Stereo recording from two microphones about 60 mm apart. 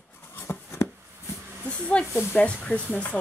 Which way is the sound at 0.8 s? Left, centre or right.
Left.